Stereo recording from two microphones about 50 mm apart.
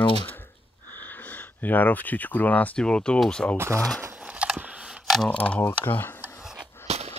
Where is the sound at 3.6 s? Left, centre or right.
Right.